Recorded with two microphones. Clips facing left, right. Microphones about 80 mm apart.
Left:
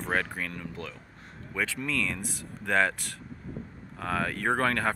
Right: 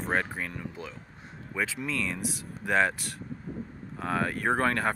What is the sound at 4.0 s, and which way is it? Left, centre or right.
Speech, centre.